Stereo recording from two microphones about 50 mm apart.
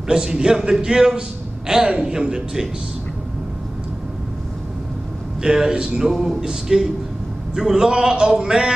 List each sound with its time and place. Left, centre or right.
0.1 s a man's voice: centre
5.4 s a man's voice: centre